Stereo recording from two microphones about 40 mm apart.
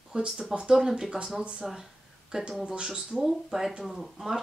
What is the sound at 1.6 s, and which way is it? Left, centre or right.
Speech, centre.